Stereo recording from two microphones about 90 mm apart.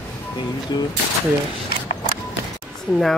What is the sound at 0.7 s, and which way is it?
Speech, 50° left (ahead or behind).